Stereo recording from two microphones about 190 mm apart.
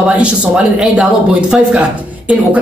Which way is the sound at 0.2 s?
5° right (ahead or behind).